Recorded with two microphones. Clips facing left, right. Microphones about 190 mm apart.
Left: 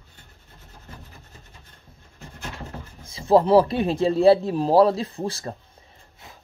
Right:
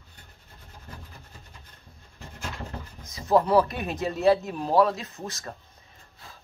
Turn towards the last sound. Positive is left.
turn(degrees=30)  # may be behind; listen again after turning